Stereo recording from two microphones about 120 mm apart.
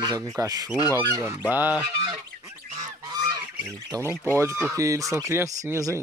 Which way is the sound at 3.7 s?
25° right (ahead or behind).